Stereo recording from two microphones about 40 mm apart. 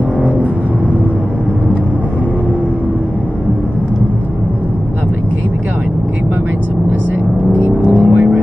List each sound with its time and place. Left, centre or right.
7.6 s vehicle: right